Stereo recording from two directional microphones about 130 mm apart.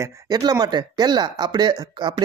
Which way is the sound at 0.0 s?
30° right (ahead or behind).